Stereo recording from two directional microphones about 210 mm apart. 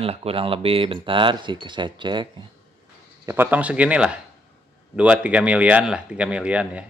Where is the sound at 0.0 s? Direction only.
30° right (ahead or behind).